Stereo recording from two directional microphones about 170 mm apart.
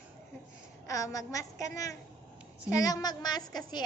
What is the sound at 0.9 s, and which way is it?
A woman's voice, 20° left (ahead or behind).